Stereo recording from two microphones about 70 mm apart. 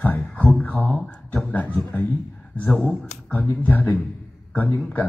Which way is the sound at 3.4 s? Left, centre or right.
Left.